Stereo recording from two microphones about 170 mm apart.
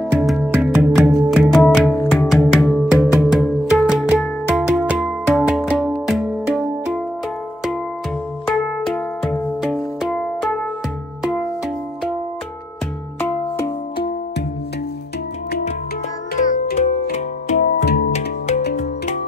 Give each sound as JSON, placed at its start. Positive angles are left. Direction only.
{"t": 0.1, "sound": "music", "side_deg": -5}
{"t": 8.5, "sound": "music", "side_deg": 5}
{"t": 17.1, "sound": "music", "side_deg": 45}
{"t": 17.8, "sound": "music", "side_deg": 65}